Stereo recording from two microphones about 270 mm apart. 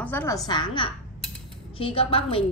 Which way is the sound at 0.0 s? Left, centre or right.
Centre.